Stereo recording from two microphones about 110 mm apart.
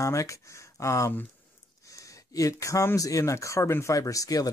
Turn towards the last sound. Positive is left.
turn(degrees=30)  # may be behind; listen again after turning